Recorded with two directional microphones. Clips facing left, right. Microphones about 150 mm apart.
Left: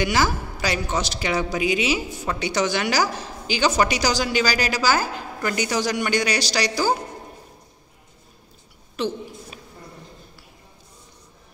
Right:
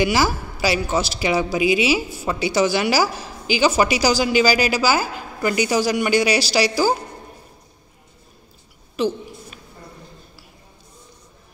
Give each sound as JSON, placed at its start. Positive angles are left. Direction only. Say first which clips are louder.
{"t": 0.0, "sound": "a man's voice", "louder": "right 3 dB", "side_deg": -10}
{"t": 9.0, "sound": "a man's voice", "louder": "right 4 dB", "side_deg": -5}